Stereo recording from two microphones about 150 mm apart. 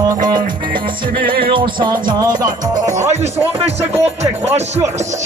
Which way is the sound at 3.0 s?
50° right (ahead or behind).